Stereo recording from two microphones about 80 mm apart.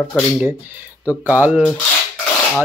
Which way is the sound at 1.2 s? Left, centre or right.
Centre.